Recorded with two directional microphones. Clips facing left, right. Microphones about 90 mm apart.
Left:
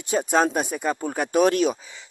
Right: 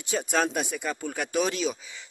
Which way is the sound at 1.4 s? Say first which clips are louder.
Left 9 dB; 50° left (ahead or behind).